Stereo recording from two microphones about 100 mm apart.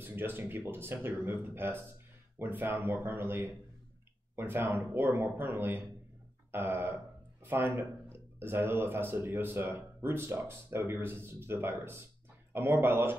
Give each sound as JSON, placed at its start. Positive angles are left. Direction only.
{"t": 0.0, "sound": "speech", "side_deg": -20}